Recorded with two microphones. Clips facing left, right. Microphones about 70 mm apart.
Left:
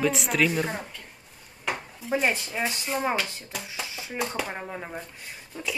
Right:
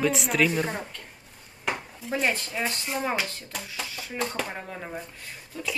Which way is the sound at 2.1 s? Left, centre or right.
Centre.